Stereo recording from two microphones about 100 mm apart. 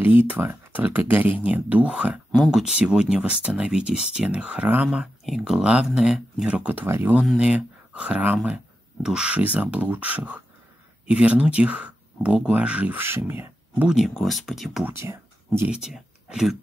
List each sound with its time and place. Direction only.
0.0 s speech: 20° right (ahead or behind)
7.2 s speech: 5° right (ahead or behind)
13.8 s speech: centre (ahead or behind)
14.9 s speech: 25° right (ahead or behind)
15.7 s speech: 5° right (ahead or behind)